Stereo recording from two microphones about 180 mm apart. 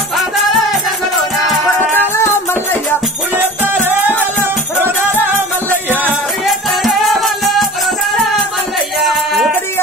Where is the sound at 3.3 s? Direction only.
10° right (ahead or behind).